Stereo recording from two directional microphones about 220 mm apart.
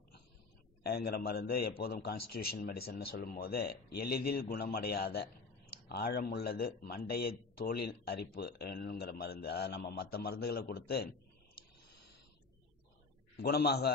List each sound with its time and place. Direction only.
0.8 s a man's voice: 45° left (ahead or behind)
13.4 s a man's voice: 45° left (ahead or behind)